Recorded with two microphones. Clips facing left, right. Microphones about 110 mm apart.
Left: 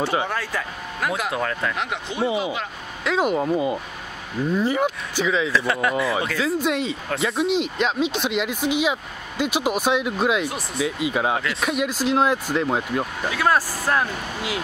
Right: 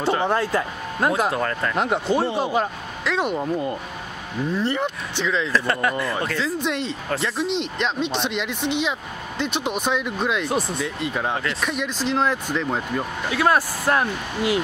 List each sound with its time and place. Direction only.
0.3 s speech: 25° right (ahead or behind)
1.3 s speech: centre (ahead or behind)
1.8 s speech: 40° right (ahead or behind)
2.2 s speech: 5° left (ahead or behind)
13.4 s speech: 15° right (ahead or behind)